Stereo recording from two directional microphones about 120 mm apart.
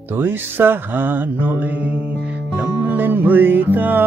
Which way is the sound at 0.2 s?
15° right (ahead or behind).